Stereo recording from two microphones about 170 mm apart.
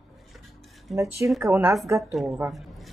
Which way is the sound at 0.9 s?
Centre (ahead or behind).